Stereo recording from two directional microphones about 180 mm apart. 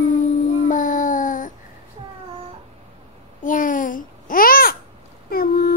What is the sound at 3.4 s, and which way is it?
Babbling, 50° left (ahead or behind).